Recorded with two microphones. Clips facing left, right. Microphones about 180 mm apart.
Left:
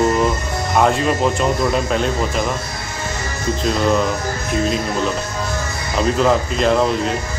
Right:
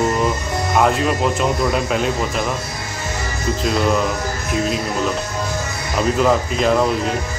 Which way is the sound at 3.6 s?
5° right (ahead or behind).